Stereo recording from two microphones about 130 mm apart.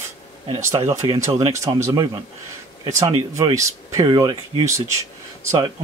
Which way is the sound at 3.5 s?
25° right (ahead or behind).